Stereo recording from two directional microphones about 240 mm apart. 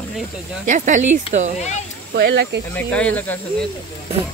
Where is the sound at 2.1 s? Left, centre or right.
Right.